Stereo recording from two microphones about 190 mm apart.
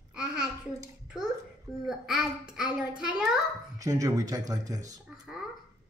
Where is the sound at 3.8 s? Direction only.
15° right (ahead or behind).